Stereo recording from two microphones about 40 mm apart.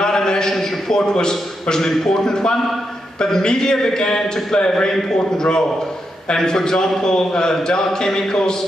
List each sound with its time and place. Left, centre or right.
0.0 s a man's voice: centre